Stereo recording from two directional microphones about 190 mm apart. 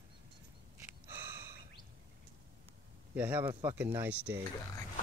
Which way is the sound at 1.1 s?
15° right (ahead or behind).